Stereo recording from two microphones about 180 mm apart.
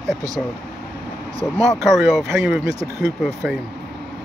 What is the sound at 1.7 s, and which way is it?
Speech, centre (ahead or behind).